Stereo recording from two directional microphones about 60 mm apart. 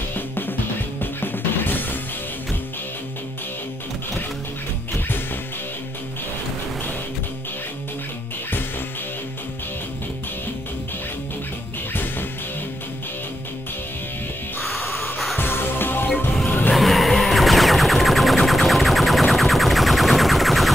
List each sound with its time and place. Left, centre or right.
0.1 s music: left
11.9 s music: left
14.6 s music: centre
15.3 s music: left
16.7 s music: centre